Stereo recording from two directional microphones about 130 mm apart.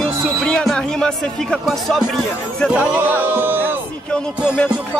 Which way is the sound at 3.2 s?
15° right (ahead or behind).